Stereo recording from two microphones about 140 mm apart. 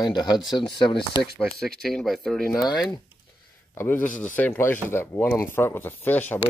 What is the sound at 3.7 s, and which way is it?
Speech, 15° left (ahead or behind).